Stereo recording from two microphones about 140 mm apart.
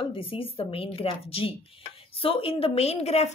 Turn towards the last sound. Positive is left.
turn(degrees=50)  # may be behind; listen again after turning